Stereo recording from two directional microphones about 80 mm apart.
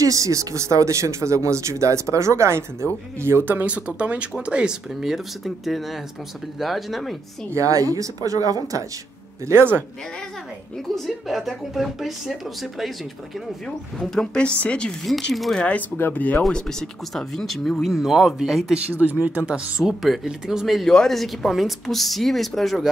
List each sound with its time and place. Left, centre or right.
0.0 s speech: right; by 7.2 s centre
7.5 s speech: right
9.5 s speech: right
11.1 s speech: centre
15.0 s speech: centre
16.0 s speech: left
16.4 s speech: centre
18.9 s speech: right
19.8 s speech: centre